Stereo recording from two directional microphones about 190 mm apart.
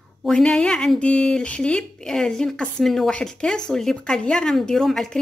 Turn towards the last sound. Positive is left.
turn(degrees=0)  # may be behind; listen again after turning